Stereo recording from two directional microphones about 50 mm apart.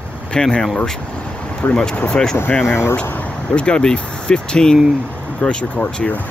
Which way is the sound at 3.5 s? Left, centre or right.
Left.